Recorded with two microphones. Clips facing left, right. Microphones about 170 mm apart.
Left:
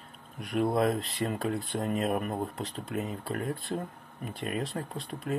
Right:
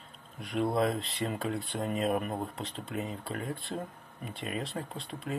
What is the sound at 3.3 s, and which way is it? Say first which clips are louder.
Speech: left 5 dB; 50° left (ahead or behind).